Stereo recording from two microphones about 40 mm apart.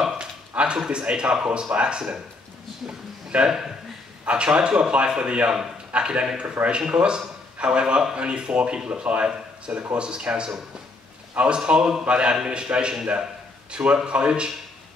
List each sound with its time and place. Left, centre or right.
0.2 s a sound: right
0.8 s speech: right
3.4 s speech: centre
4.3 s speech: right